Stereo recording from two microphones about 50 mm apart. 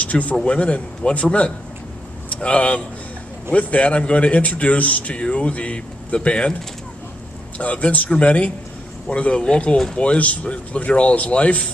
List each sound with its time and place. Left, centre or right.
0.0 s a man's voice: left
7.5 s a man's voice: left